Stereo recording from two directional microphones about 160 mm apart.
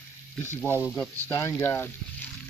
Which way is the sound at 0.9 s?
10° left (ahead or behind).